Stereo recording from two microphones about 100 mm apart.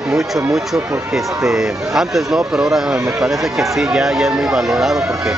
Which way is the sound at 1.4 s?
5° right (ahead or behind).